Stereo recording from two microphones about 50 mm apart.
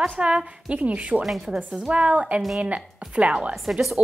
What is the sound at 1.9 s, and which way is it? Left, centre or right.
A woman's voice, right.